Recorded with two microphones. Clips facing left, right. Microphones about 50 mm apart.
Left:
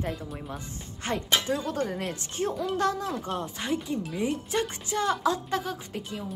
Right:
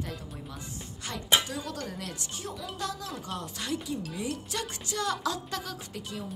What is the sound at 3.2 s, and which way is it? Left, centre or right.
Speech, left.